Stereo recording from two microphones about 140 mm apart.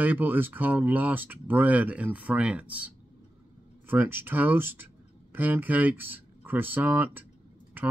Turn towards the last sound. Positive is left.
turn(degrees=-15)  # may be behind; listen again after turning